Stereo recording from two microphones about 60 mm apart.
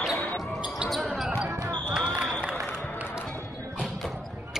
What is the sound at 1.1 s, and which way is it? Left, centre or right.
Basketball bounce, centre.